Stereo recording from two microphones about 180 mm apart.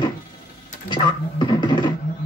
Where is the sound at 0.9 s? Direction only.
25° left (ahead or behind).